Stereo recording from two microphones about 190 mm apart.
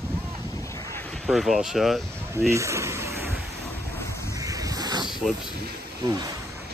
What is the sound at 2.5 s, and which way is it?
Speech, 15° right (ahead or behind).